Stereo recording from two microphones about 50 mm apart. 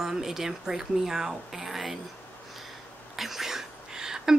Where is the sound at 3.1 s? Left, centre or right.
Centre.